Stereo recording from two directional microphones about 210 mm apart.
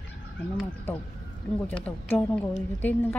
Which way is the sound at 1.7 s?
5° left (ahead or behind).